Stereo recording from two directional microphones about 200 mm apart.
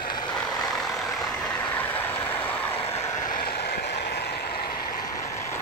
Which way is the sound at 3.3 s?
45° left (ahead or behind).